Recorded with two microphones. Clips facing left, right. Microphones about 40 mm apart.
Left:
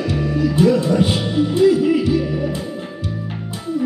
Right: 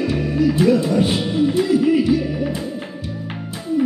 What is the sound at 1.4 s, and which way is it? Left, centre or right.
Speech, centre.